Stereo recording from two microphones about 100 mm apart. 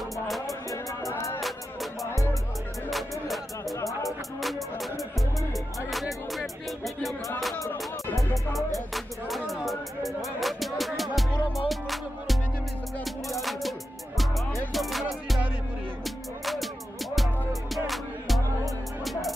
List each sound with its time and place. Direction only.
0.7 s music: 35° left (ahead or behind)
2.9 s music: centre (ahead or behind)
8.2 s music: centre (ahead or behind)
17.1 s music: centre (ahead or behind)